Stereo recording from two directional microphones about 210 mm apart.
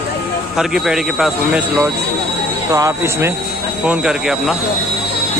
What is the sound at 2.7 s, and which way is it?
Speech, 15° right (ahead or behind).